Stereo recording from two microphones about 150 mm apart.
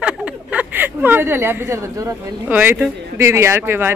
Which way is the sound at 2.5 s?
10° right (ahead or behind).